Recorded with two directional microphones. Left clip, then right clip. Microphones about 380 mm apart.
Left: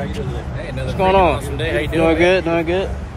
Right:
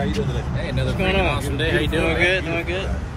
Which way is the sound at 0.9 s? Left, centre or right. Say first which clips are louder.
Left 8 dB; centre.